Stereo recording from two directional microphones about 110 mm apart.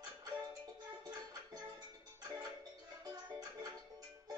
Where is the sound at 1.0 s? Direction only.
40° right (ahead or behind).